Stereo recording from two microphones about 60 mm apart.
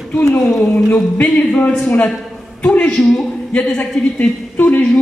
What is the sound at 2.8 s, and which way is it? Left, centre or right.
Speech, centre.